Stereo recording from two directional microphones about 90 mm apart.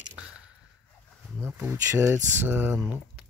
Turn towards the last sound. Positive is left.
turn(degrees=-20)  # may be behind; listen again after turning